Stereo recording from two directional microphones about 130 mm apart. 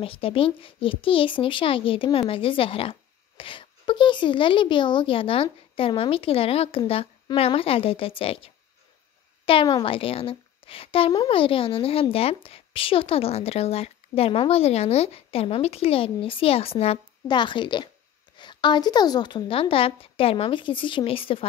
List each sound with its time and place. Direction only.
0.0 s a woman's voice: 45° left (ahead or behind)
9.5 s a woman's voice: 45° left (ahead or behind)
17.3 s a woman's voice: 35° left (ahead or behind)